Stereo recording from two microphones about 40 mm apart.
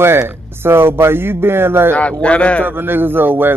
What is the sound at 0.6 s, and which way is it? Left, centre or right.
Speech, right.